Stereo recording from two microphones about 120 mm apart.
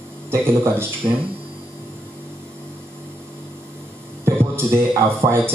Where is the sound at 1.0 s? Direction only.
50° right (ahead or behind).